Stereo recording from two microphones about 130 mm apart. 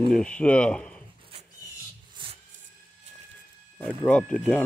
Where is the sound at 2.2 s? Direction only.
40° right (ahead or behind).